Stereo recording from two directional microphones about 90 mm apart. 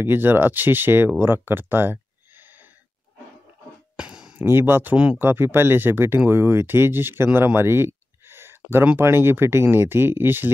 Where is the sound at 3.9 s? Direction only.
10° right (ahead or behind).